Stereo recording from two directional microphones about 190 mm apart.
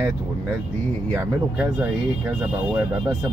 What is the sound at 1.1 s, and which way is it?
Speech, 10° right (ahead or behind).